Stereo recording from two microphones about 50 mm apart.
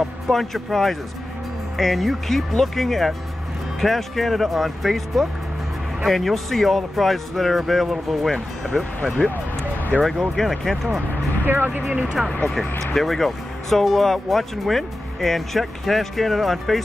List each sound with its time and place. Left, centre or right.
0.3 s speech: centre
8.7 s speech: left
10.3 s speech: centre
11.4 s speech: right
12.4 s speech: centre